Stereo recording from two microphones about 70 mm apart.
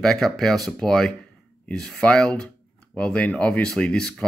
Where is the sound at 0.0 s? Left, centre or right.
Centre.